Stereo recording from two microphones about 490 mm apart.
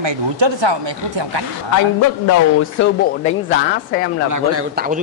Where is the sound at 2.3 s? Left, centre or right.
Left.